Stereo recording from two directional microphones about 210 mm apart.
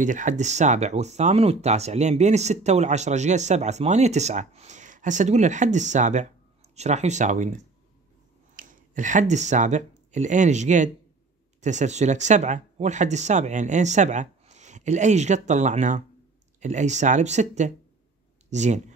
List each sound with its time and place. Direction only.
0.0 s speech: 35° right (ahead or behind)